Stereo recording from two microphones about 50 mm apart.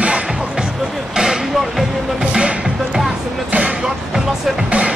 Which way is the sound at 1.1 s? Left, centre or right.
Centre.